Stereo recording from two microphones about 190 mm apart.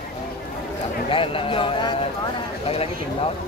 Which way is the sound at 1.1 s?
30° left (ahead or behind).